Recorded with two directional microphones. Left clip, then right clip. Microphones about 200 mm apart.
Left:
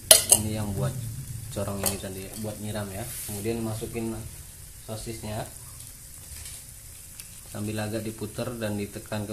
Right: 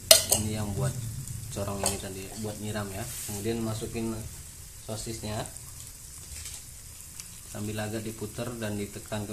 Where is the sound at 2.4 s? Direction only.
Centre (ahead or behind).